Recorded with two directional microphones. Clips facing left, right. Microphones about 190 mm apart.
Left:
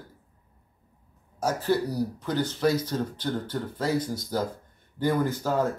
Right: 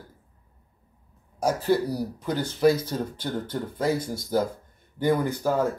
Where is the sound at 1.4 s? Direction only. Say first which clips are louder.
Right 2 dB; 10° right (ahead or behind).